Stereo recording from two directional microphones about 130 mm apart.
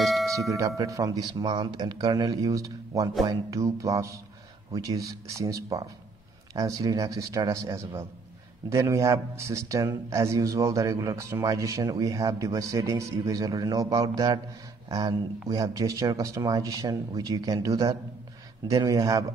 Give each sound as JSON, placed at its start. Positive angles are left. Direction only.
{"t": 0.0, "sound": "doorbell", "side_deg": 0}
{"t": 0.4, "sound": "a man's voice", "side_deg": -25}